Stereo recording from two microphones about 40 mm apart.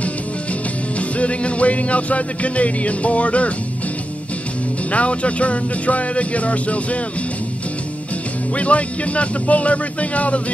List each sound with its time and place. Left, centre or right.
0.9 s music: left
4.9 s music: left
8.5 s music: left